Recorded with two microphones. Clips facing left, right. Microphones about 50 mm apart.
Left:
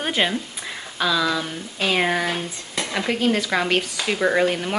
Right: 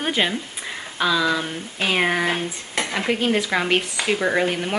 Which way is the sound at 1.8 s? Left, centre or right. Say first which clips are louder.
Even; centre.